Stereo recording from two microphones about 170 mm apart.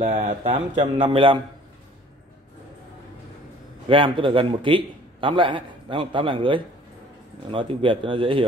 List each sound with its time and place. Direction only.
0.0 s speech: 40° right (ahead or behind)
3.9 s a man's voice: 30° right (ahead or behind)